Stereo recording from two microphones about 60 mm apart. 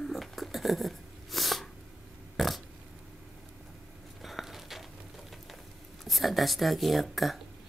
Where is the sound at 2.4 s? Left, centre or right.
Centre.